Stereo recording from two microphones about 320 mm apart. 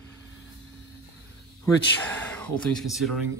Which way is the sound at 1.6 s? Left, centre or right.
Centre.